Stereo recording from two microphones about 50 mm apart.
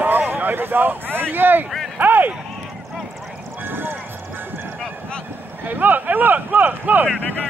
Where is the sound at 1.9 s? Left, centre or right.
Right.